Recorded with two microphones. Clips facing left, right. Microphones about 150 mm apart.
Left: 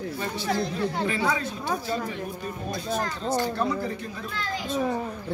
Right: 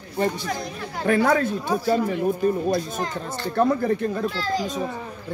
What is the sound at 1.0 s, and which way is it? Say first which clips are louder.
Speech: right 7 dB; 55° right (ahead or behind).